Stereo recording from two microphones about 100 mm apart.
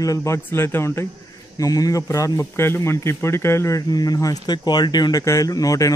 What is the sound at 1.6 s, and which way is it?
A man's voice, 35° left (ahead or behind).